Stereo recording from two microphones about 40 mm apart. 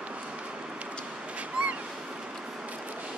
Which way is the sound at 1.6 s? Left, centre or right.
Right.